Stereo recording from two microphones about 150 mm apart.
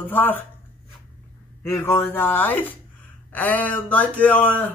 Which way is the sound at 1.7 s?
15° left (ahead or behind).